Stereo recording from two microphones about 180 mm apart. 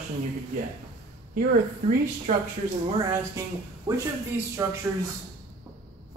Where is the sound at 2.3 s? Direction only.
45° right (ahead or behind).